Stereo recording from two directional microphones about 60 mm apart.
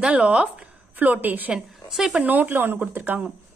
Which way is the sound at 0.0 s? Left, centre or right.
Centre.